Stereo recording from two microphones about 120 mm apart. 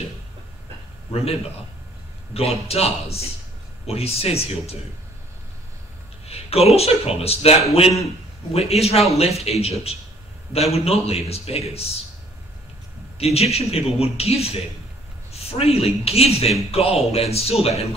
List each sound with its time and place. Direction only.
1.1 s a man's voice: 55° left (ahead or behind)
2.3 s a man's voice: 55° left (ahead or behind)
6.2 s a man's voice: 60° left (ahead or behind)
8.5 s a man's voice: 60° left (ahead or behind)
13.2 s a man's voice: 60° left (ahead or behind)